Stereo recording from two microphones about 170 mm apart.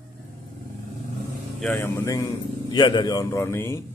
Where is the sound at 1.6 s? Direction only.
15° left (ahead or behind).